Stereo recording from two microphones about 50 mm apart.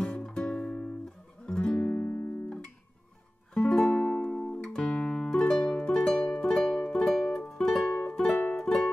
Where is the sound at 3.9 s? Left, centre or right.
Left.